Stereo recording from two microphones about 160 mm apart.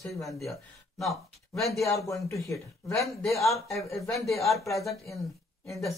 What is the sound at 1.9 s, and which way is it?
Speech, 20° left (ahead or behind).